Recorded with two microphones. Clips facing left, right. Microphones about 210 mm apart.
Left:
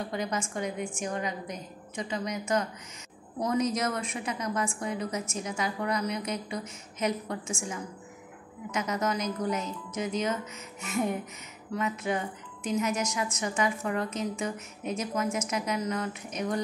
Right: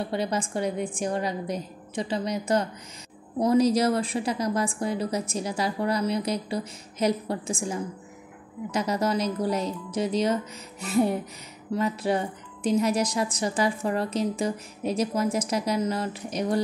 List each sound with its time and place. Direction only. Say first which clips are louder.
0.0 s speech: right 4 dB; 30° right (ahead or behind)